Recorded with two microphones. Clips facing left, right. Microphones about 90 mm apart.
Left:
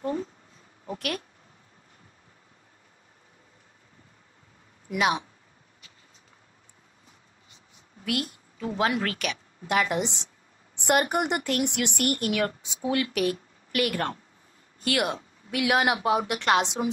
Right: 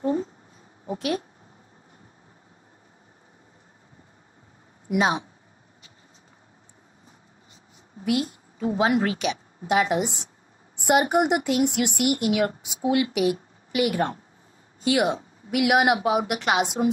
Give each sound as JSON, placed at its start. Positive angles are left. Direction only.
{"t": 0.0, "sound": "a sound", "side_deg": -25}
{"t": 0.8, "sound": "speech", "side_deg": -20}
{"t": 4.9, "sound": "speech", "side_deg": -35}
{"t": 8.0, "sound": "a woman's voice", "side_deg": -20}